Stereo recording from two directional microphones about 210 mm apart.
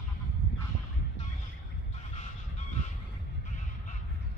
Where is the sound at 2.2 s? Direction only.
35° left (ahead or behind).